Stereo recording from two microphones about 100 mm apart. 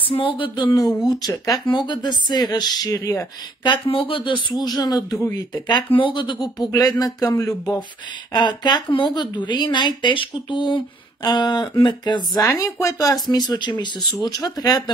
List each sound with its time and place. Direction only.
0.1 s speech: 60° left (ahead or behind)
0.7 s speech: 40° left (ahead or behind)
1.7 s speech: 50° left (ahead or behind); by 3.3 s 35° left (ahead or behind)
3.6 s speech: 55° left (ahead or behind)
5.9 s speech: 55° left (ahead or behind)
6.6 s speech: 40° left (ahead or behind)
8.3 s speech: 45° left (ahead or behind)
12.4 s speech: 30° left (ahead or behind)